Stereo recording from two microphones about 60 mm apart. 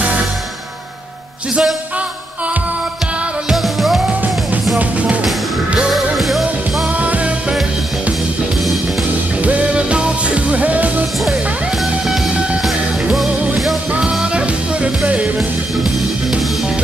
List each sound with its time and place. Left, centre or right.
1.5 s music: centre
3.4 s music: centre
4.7 s music: right
5.9 s music: centre
6.9 s music: right
9.4 s music: right
12.6 s music: centre
14.2 s music: centre
15.8 s music: centre